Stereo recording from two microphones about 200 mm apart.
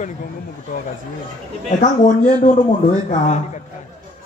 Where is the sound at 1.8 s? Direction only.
35° left (ahead or behind).